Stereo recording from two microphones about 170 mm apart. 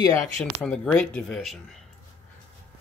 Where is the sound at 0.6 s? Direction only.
5° left (ahead or behind).